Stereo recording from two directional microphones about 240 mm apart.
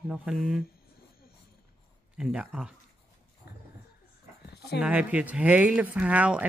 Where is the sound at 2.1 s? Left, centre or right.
Centre.